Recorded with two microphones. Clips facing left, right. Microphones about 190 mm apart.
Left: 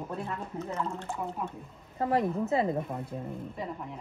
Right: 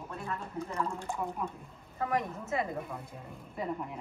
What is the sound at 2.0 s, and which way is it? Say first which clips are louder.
Speech: left 6 dB; 30° left (ahead or behind).